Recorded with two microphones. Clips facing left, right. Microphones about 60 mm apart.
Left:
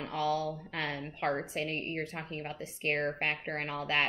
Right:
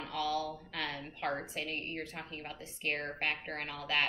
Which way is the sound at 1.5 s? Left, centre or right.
Left.